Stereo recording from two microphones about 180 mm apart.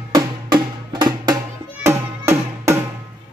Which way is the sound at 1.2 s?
15° right (ahead or behind).